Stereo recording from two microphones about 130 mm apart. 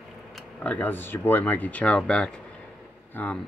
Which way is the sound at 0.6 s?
10° left (ahead or behind).